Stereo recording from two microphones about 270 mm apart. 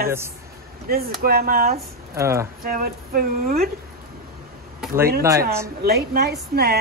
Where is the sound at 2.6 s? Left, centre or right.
Right.